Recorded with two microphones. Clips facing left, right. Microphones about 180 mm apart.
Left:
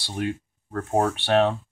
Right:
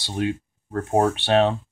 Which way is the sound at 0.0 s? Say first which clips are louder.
Right 3 dB; 20° right (ahead or behind).